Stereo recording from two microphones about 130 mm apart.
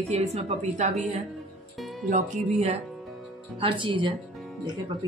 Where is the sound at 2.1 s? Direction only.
70° right (ahead or behind).